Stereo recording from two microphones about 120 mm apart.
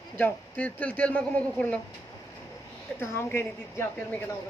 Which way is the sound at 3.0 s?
20° left (ahead or behind).